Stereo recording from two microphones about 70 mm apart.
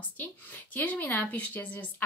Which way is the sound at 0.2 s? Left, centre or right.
Left.